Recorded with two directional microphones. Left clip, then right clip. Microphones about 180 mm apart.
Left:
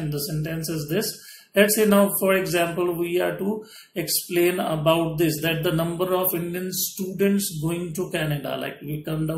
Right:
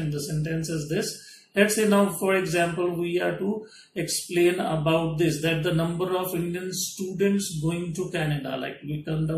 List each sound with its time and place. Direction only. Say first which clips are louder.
0.1 s speech: left 1 dB; 40° left (ahead or behind)
7.2 s a man's voice: left 2 dB; 40° left (ahead or behind)